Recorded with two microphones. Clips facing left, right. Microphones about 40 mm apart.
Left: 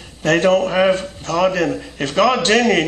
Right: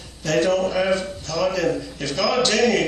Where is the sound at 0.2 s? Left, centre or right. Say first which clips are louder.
Left 5 dB; left.